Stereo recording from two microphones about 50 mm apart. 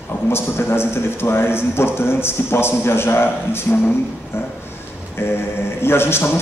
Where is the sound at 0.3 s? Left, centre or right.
Left.